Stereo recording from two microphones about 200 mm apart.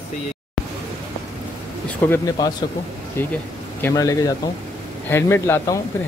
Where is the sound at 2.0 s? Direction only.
10° left (ahead or behind).